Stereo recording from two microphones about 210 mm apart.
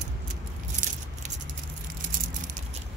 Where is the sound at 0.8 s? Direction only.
40° right (ahead or behind).